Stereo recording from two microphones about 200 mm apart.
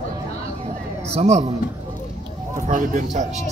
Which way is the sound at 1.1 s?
35° right (ahead or behind).